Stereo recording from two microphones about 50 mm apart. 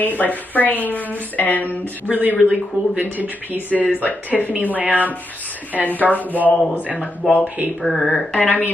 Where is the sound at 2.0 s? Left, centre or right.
Right.